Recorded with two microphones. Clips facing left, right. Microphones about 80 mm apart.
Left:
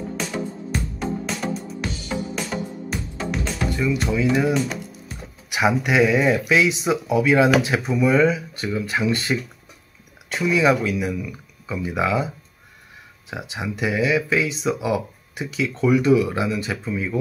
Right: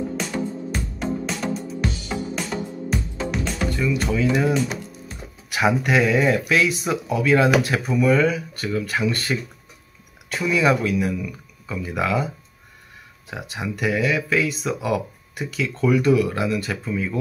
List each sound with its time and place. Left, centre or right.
0.2 s music: centre
3.9 s speech: centre
4.6 s music: centre
5.5 s speech: centre
13.3 s speech: centre